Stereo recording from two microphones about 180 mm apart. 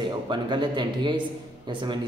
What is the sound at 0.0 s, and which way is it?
A man's voice, 25° right (ahead or behind).